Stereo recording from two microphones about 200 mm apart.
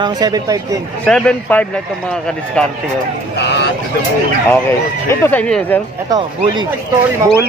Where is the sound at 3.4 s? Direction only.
60° left (ahead or behind).